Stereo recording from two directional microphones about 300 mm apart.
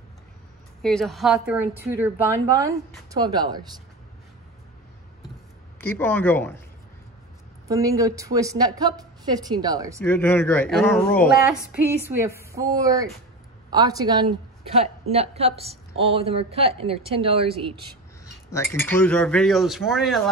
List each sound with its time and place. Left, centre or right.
0.8 s a woman's voice: centre
5.8 s speech: centre
7.6 s a woman's voice: centre
10.0 s a woman's voice: centre
18.2 s speech: centre